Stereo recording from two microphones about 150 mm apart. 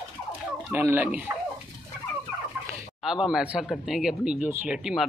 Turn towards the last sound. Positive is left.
turn(degrees=-5)  # may be behind; listen again after turning